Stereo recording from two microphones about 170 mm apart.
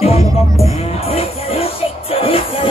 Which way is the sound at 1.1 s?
35° left (ahead or behind).